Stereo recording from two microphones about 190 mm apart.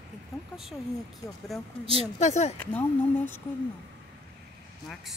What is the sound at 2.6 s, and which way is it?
Speech, 10° left (ahead or behind).